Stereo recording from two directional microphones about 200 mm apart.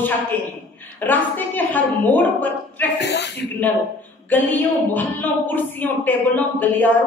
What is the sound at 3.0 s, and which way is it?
Speech, 60° left (ahead or behind).